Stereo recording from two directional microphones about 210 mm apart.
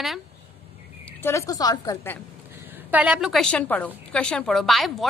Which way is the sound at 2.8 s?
5° right (ahead or behind).